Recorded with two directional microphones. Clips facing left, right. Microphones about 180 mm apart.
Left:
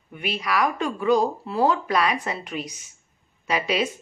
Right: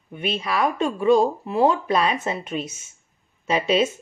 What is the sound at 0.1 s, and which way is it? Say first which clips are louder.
Speech: right 1 dB; 25° right (ahead or behind).